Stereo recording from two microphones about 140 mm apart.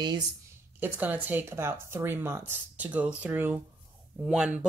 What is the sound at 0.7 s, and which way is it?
Speech, 15° right (ahead or behind).